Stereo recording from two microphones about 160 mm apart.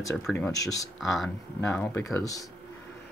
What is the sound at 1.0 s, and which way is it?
Speech, centre (ahead or behind).